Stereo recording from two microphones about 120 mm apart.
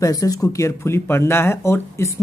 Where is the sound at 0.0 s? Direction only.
30° left (ahead or behind).